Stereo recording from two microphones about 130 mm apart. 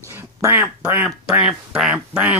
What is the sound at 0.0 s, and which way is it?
Quack, 20° right (ahead or behind).